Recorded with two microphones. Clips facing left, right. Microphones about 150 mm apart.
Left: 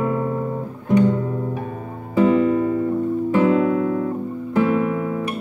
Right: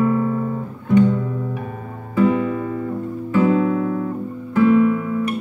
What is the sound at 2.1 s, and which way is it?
Music, 30° left (ahead or behind).